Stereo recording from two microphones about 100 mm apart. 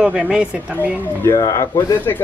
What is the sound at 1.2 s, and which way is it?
Speech, 35° left (ahead or behind).